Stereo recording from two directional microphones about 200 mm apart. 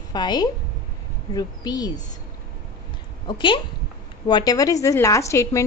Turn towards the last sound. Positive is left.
turn(degrees=15)  # may be behind; listen again after turning